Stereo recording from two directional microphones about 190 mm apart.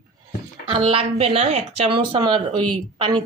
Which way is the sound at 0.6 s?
30° right (ahead or behind).